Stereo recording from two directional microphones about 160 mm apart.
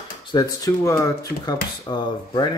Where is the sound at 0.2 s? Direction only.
25° left (ahead or behind).